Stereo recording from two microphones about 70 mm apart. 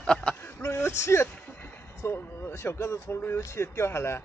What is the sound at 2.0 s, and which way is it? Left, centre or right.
Speech, left.